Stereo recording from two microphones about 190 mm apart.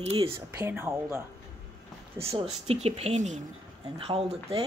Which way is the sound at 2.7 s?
35° right (ahead or behind).